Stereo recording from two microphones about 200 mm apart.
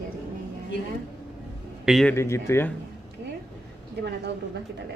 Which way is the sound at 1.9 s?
Centre (ahead or behind).